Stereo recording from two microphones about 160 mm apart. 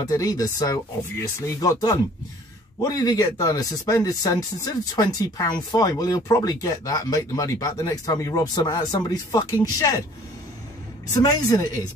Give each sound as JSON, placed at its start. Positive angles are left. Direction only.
{"t": 0.0, "sound": "speech", "side_deg": 20}
{"t": 11.1, "sound": "speech", "side_deg": 25}